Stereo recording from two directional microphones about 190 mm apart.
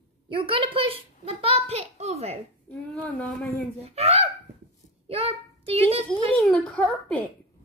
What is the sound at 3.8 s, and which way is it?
A child's voice, 35° right (ahead or behind).